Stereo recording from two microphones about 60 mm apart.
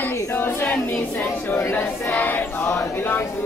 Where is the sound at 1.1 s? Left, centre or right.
Left.